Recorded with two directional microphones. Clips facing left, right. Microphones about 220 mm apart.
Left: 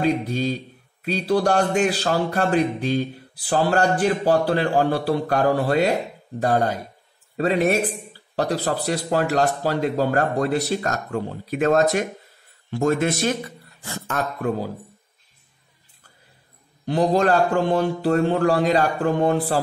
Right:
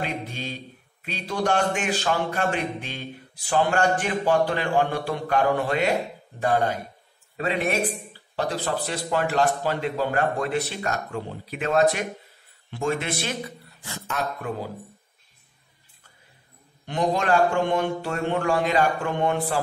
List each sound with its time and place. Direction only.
0.0 s speech: 40° left (ahead or behind)
16.8 s speech: 35° left (ahead or behind)